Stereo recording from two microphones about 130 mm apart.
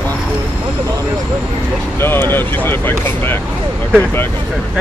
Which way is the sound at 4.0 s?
15° left (ahead or behind).